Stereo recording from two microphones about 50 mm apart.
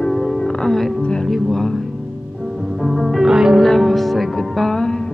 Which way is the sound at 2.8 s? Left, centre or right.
Centre.